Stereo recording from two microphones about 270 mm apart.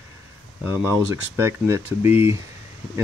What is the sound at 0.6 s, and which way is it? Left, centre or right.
Speech, centre.